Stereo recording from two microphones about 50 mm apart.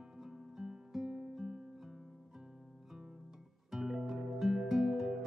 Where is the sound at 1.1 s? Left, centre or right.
Centre.